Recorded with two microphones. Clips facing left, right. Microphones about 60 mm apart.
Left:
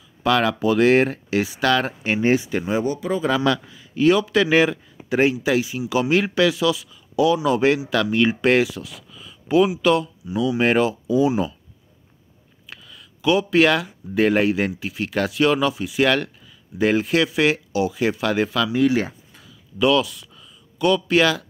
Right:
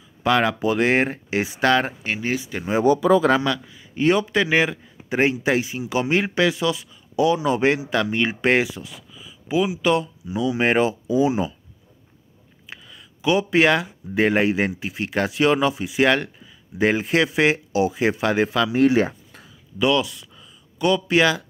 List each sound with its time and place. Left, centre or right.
0.2 s speech: centre
2.1 s speech: left
3.4 s speech: centre
3.9 s speech: right
4.4 s speech: centre
5.2 s speech: right; by 11.5 s centre
12.6 s a sound: centre
13.2 s speech: centre
18.7 s speech: right
19.8 s speech: centre
20.3 s a sound: centre